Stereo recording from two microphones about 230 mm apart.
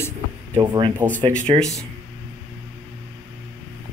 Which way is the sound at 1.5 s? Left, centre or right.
Right.